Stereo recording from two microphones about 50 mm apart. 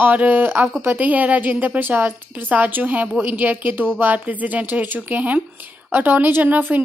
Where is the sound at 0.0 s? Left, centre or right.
Right.